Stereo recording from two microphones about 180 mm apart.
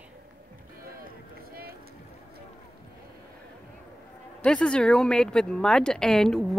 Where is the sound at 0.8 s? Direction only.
55° right (ahead or behind).